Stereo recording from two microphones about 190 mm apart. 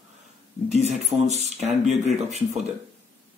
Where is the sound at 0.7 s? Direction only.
35° right (ahead or behind).